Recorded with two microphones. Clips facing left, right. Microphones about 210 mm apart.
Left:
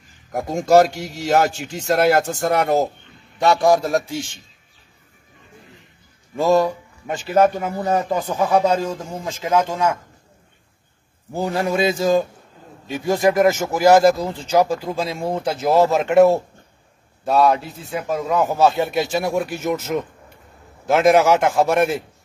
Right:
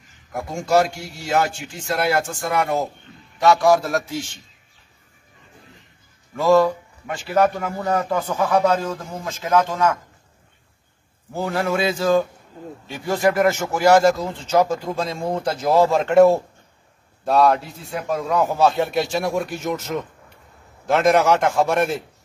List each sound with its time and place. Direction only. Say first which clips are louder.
0.3 s a man's voice: left 5 dB; 40° left (ahead or behind)
3.3 s a man's voice: even; 30° left (ahead or behind)
6.3 s a man's voice: right 1 dB; 20° left (ahead or behind)
11.3 s a man's voice: left 2 dB; 15° left (ahead or behind)